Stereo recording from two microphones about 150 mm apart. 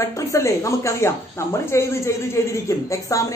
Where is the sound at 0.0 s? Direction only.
20° left (ahead or behind).